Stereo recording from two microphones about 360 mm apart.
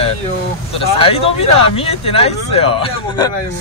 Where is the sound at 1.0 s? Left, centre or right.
Centre.